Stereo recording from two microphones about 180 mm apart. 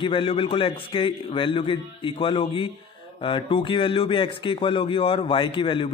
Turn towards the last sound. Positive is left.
turn(degrees=30)  # may be behind; listen again after turning